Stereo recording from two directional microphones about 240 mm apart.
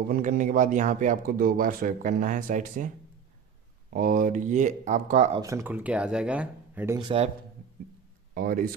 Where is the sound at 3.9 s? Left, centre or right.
Right.